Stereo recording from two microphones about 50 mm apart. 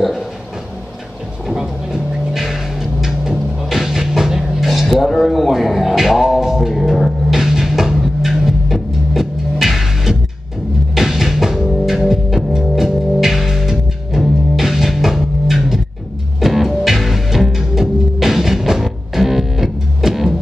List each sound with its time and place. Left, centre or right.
1.5 s vehicle: centre
2.3 s music: centre